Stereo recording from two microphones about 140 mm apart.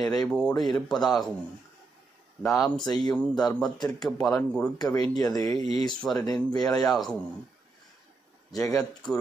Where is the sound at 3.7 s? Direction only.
30° left (ahead or behind).